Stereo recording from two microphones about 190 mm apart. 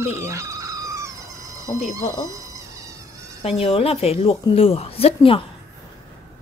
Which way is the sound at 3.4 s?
30° left (ahead or behind).